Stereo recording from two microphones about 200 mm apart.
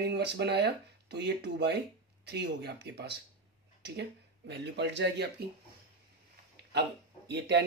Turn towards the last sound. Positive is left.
turn(degrees=-60)  # may be behind; listen again after turning